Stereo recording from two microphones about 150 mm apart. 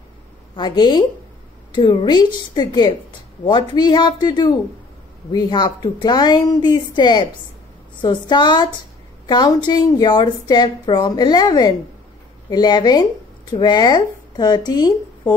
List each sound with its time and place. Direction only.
0.6 s a woman's voice: 30° left (ahead or behind)